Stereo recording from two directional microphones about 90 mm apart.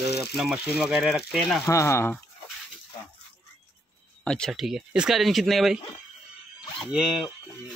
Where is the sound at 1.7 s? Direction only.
30° left (ahead or behind).